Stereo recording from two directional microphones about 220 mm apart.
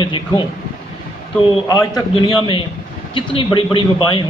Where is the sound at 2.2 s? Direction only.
20° left (ahead or behind).